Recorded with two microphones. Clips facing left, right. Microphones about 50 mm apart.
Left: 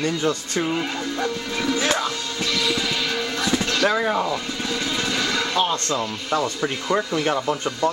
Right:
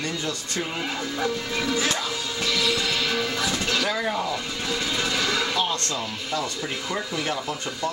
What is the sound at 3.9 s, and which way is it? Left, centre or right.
Speech, left.